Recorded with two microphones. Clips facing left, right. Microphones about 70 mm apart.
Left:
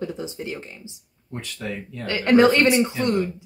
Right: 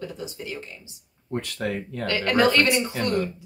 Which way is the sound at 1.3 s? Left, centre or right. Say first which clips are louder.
Right 4 dB; right.